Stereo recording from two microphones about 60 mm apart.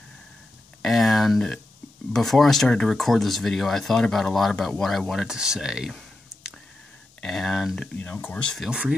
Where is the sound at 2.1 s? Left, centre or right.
Centre.